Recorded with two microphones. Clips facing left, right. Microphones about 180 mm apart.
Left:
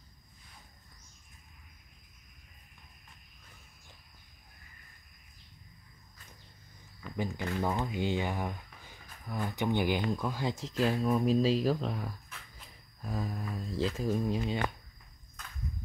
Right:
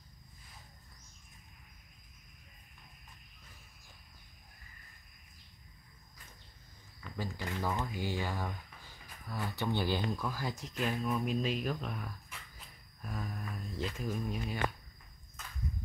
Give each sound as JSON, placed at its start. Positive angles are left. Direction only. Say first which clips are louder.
{"t": 7.2, "sound": "speech", "louder": "left 5 dB", "side_deg": 20}
{"t": 13.0, "sound": "a sound", "louder": "left 5 dB", "side_deg": 30}
{"t": 13.7, "sound": "speech", "louder": "left 7 dB", "side_deg": 30}